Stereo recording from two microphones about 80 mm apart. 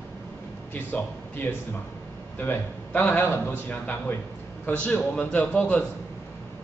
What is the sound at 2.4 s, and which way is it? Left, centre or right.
A man's voice, left.